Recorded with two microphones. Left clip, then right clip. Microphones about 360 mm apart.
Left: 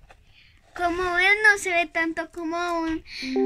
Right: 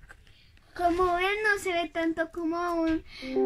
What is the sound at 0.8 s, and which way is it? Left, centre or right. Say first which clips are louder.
A child's voice: left 4 dB; left.